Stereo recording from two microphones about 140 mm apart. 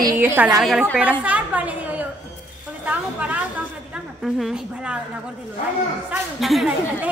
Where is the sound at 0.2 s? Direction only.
15° right (ahead or behind).